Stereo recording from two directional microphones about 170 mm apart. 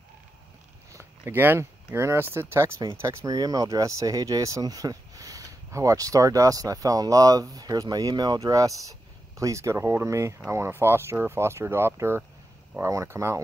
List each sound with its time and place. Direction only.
0.9 s speech: 15° right (ahead or behind)